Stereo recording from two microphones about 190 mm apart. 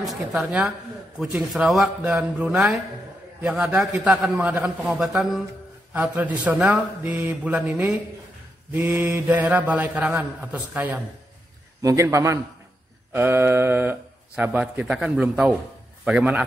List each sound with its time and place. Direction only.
0.0 s a man's voice: centre (ahead or behind)